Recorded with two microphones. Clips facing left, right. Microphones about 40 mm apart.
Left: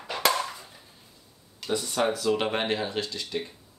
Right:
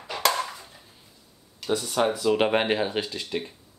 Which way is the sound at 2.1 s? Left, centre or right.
Centre.